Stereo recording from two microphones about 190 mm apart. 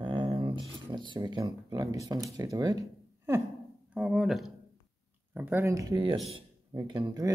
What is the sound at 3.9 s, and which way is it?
Speech, 5° right (ahead or behind).